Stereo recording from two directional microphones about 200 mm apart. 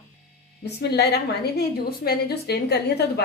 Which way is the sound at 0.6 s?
55° left (ahead or behind).